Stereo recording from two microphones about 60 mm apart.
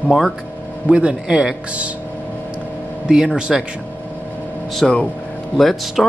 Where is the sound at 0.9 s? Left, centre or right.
Centre.